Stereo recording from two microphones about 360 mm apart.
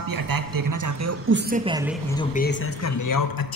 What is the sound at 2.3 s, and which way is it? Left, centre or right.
Speech, left.